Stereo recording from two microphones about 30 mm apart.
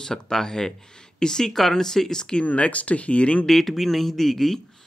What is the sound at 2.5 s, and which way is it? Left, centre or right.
Speech, left.